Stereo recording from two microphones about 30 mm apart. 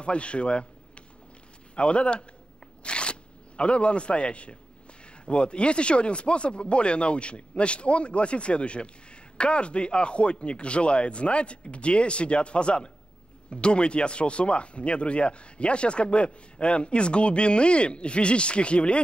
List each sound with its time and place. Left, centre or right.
0.0 s speech: left
2.8 s a sound: left
5.2 s speech: left